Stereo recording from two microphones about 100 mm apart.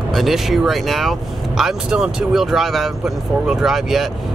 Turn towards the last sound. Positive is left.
turn(degrees=0)  # may be behind; listen again after turning